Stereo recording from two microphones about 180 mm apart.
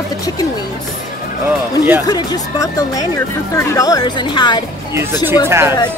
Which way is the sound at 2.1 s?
20° left (ahead or behind).